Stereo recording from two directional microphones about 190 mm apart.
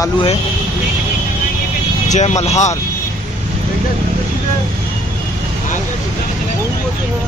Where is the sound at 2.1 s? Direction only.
35° left (ahead or behind).